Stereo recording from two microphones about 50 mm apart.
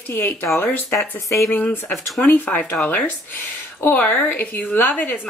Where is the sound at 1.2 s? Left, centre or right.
Left.